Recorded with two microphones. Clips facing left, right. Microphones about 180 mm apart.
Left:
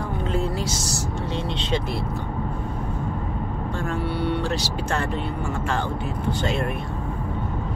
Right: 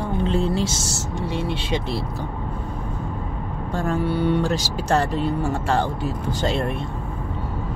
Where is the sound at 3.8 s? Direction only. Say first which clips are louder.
Right 5 dB; 40° right (ahead or behind).